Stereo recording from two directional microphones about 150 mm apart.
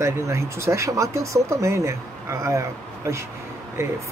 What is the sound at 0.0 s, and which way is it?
Speech, 20° right (ahead or behind).